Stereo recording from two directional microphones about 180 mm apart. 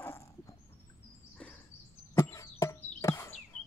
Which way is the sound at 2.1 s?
15° left (ahead or behind).